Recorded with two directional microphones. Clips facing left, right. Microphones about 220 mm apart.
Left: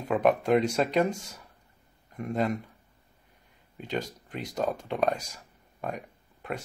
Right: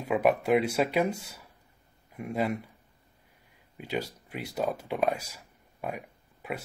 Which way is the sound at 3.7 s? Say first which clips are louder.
Even; 10° right (ahead or behind).